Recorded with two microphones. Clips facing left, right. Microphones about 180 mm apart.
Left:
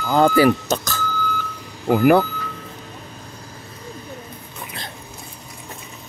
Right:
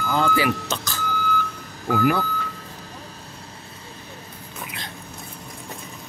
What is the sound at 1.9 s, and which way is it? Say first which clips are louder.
Speech: left 7 dB; 60° left (ahead or behind).